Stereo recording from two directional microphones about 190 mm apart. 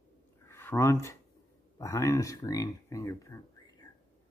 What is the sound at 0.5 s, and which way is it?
Speech, 15° left (ahead or behind).